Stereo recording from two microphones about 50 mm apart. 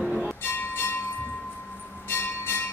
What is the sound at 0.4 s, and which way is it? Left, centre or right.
Bell, left.